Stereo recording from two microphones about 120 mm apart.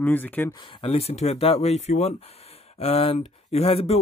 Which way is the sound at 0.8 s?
55° left (ahead or behind).